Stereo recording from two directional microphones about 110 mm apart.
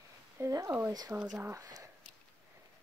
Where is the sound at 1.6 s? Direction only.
35° right (ahead or behind).